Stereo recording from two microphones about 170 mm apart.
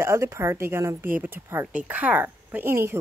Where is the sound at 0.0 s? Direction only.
15° right (ahead or behind).